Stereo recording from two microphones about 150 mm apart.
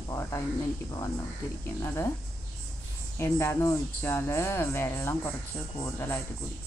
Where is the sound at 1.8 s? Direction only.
20° left (ahead or behind).